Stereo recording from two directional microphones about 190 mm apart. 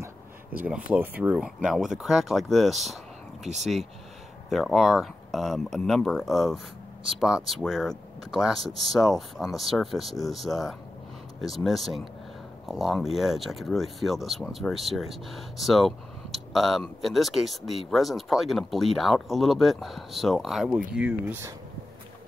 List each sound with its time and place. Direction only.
0.6 s speech: 5° right (ahead or behind)
3.5 s speech: 35° right (ahead or behind)
4.5 s speech: centre (ahead or behind)